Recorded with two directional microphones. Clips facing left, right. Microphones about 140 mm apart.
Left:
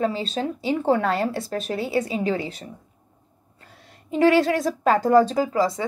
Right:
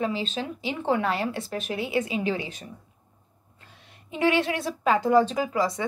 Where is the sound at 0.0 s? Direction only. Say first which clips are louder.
Left 4 dB; 40° left (ahead or behind).